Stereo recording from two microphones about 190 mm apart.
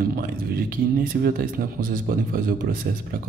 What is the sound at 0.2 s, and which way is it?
Speech, 45° right (ahead or behind).